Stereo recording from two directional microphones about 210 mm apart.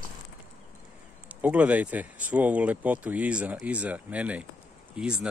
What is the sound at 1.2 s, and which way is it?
Speech, 5° right (ahead or behind).